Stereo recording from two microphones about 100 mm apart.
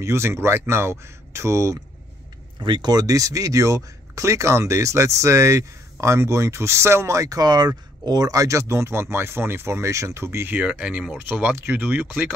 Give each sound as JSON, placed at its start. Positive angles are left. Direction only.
{"t": 0.0, "sound": "speech", "side_deg": -30}
{"t": 2.6, "sound": "speech", "side_deg": -50}
{"t": 10.6, "sound": "speech", "side_deg": -10}